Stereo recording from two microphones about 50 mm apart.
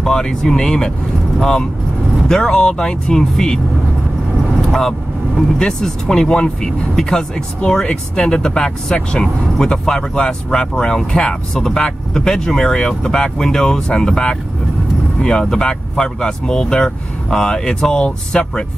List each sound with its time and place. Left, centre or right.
0.0 s speech: centre
5.6 s speech: centre